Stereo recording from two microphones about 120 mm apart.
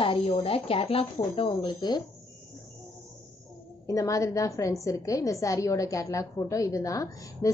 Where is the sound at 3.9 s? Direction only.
30° left (ahead or behind).